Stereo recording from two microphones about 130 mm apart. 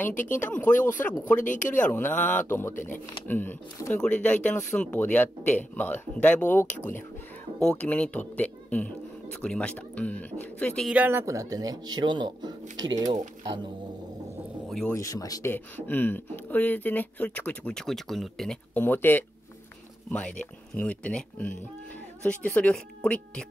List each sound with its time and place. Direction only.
0.1 s speech: 80° left
0.4 s speech: 15° left (ahead or behind)
1.4 s speech: 85° left
1.8 s speech: 15° left (ahead or behind)
2.7 s speech: 80° left
3.3 s speech: 15° left (ahead or behind)
10.9 s a man's voice: 15° right (ahead or behind); by 13.1 s 30° right (ahead or behind)
14.9 s speech: 25° left (ahead or behind)
15.5 s speech: 15° left (ahead or behind)
18.9 s speech: 15° left (ahead or behind)